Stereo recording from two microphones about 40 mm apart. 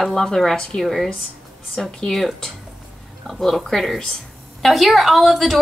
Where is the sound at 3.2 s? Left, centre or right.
Centre.